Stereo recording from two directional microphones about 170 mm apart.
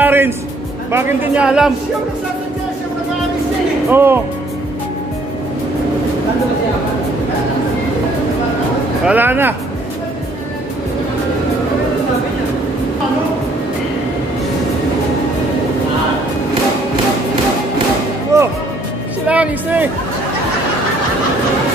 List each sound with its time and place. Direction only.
0.0 s music: 10° right (ahead or behind)
0.9 s speech: 10° right (ahead or behind)
3.9 s speech: 15° right (ahead or behind)
9.0 s speech: 10° right (ahead or behind)
18.3 s music: 15° right (ahead or behind)
19.2 s speech: 10° right (ahead or behind)